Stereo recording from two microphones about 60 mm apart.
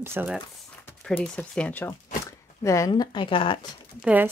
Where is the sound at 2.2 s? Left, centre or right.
Left.